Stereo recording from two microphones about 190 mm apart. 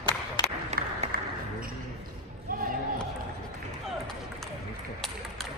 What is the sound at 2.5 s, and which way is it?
Basketball bounce, 45° right (ahead or behind).